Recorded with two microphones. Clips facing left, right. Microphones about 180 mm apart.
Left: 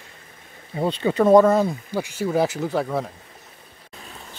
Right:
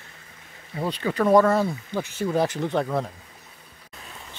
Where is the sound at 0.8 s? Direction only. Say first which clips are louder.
Left 4 dB; 25° left (ahead or behind); by 3.1 s centre (ahead or behind).